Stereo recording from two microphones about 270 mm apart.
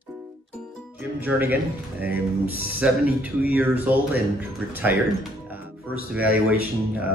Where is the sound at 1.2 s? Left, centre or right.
Centre.